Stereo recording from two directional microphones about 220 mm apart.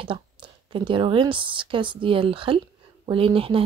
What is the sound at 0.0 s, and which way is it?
A woman's voice, 25° right (ahead or behind).